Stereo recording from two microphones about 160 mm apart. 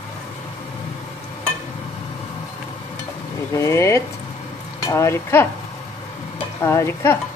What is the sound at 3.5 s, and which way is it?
Speech, 20° left (ahead or behind).